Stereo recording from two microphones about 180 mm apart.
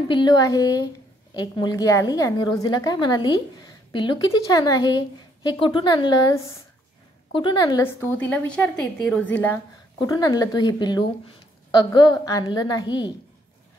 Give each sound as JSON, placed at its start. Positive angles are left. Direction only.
{"t": 0.1, "sound": "a woman's voice", "side_deg": 25}
{"t": 9.9, "sound": "a woman's voice", "side_deg": 20}